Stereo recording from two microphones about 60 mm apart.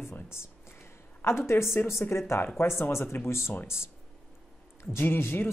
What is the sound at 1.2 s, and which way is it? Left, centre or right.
Speech, left.